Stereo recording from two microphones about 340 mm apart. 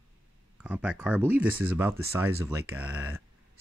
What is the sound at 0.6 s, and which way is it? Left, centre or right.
Speech, centre.